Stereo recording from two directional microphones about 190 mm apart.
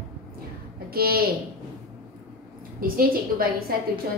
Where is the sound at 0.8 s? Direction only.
50° right (ahead or behind).